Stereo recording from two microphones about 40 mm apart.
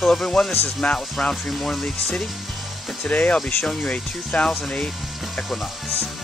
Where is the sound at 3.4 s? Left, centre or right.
Centre.